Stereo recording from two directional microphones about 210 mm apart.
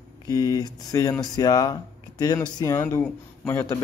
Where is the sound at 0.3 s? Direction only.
15° left (ahead or behind).